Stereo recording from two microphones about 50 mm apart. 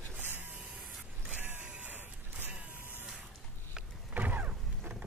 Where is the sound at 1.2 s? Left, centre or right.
Right.